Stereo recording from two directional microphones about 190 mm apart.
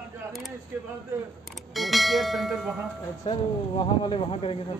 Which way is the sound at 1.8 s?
Centre (ahead or behind).